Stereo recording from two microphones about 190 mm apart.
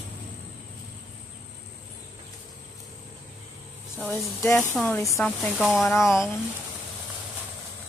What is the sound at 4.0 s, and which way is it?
Speech, 10° left (ahead or behind).